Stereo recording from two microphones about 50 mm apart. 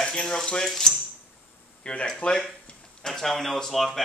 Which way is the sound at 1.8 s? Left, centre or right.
Left.